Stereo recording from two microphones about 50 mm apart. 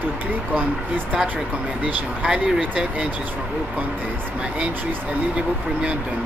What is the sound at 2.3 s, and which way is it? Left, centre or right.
Speech, centre.